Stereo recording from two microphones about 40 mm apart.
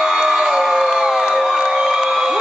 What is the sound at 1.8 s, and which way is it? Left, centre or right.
Crowd, centre.